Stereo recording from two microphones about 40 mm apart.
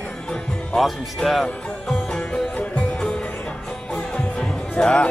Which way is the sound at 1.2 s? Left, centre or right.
Centre.